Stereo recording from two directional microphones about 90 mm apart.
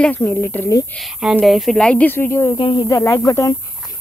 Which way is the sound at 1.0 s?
5° right (ahead or behind).